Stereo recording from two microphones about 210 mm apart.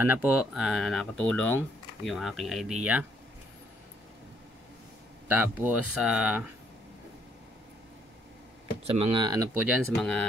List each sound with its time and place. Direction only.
0.0 s speech: 10° right (ahead or behind)
5.6 s speech: 5° right (ahead or behind)
8.8 s speech: 25° right (ahead or behind); by 9.8 s 10° right (ahead or behind)
9.9 s speech: centre (ahead or behind)